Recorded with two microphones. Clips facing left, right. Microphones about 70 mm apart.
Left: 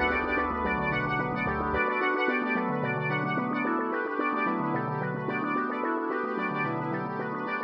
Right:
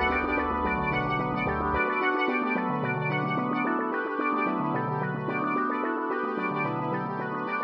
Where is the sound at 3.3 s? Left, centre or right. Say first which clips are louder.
Right 1 dB; right.